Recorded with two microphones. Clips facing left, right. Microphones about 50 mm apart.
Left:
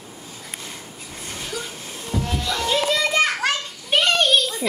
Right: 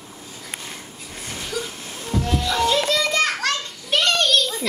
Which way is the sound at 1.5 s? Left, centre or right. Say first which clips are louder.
Right 2 dB; centre.